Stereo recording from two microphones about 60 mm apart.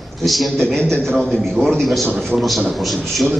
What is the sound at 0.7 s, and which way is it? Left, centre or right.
Speech, right.